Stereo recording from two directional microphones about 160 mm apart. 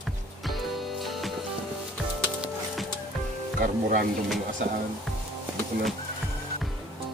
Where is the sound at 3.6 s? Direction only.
70° right (ahead or behind).